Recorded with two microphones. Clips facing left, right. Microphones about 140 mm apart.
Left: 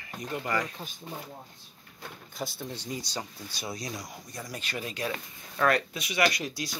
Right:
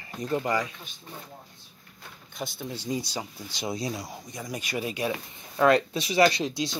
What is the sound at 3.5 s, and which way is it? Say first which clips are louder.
Speech: right 8 dB; 20° right (ahead or behind).